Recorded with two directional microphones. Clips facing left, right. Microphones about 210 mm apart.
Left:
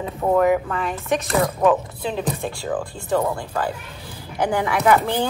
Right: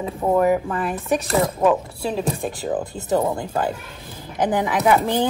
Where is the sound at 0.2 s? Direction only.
10° right (ahead or behind).